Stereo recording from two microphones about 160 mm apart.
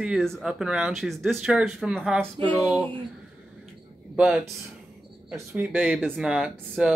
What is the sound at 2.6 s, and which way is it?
Speech, 20° left (ahead or behind).